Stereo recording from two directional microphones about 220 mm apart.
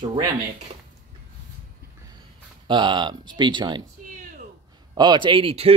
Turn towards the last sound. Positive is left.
turn(degrees=-25)  # may be behind; listen again after turning